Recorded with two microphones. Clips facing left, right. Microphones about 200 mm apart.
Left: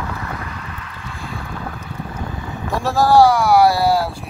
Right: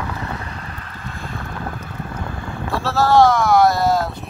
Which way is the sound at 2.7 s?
15° left (ahead or behind).